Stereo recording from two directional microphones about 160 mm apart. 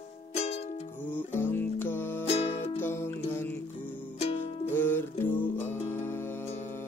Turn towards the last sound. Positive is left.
turn(degrees=15)  # may be behind; listen again after turning